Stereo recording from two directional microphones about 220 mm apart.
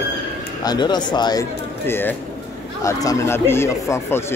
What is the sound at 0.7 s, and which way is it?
Speech, 20° left (ahead or behind).